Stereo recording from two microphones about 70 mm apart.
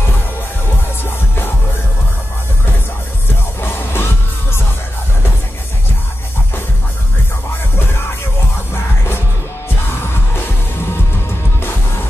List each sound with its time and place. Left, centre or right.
3.3 s music: left
7.7 s music: left